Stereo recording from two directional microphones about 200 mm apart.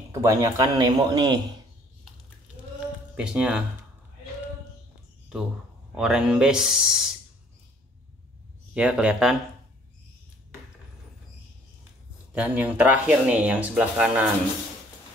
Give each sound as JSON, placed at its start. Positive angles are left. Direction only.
{"t": 0.1, "sound": "a man's voice", "side_deg": -15}
{"t": 3.2, "sound": "speech", "side_deg": -5}
{"t": 5.9, "sound": "speech", "side_deg": -5}
{"t": 8.7, "sound": "speech", "side_deg": -5}
{"t": 12.3, "sound": "speech", "side_deg": -5}